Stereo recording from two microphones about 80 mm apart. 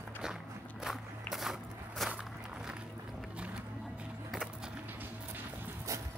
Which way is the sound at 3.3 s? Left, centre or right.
Centre.